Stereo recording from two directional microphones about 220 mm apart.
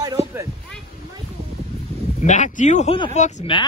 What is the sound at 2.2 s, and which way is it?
Speech, 35° left (ahead or behind).